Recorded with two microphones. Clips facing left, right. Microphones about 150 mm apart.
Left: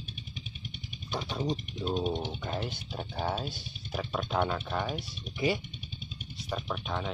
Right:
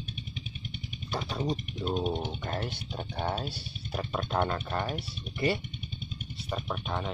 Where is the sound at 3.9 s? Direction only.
Centre (ahead or behind).